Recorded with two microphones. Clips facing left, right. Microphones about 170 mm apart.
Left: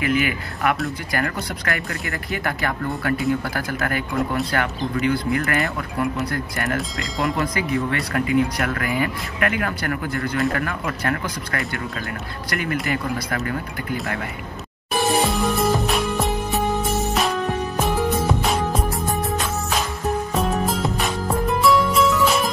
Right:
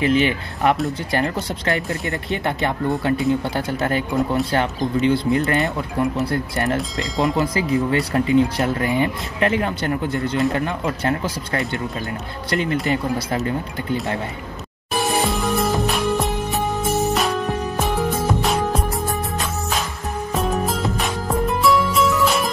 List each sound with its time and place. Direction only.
0.0 s speech: 30° right (ahead or behind)
7.0 s speech: centre (ahead or behind)
7.3 s speech: 25° right (ahead or behind)
15.0 s music: centre (ahead or behind)
20.3 s music: centre (ahead or behind)